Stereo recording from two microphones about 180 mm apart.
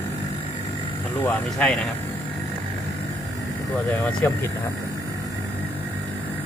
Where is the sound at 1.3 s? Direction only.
5° left (ahead or behind).